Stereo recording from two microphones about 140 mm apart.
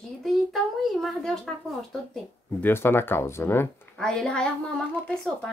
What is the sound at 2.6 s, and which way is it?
Speech, 15° left (ahead or behind).